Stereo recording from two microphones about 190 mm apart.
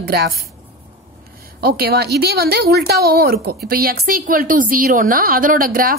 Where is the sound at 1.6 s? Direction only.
50° right (ahead or behind).